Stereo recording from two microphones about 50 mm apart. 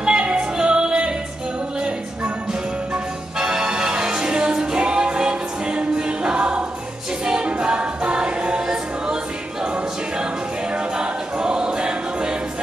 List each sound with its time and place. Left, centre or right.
0.0 s music: centre
3.3 s music: centre
7.2 s a capella: centre
10.7 s choir: centre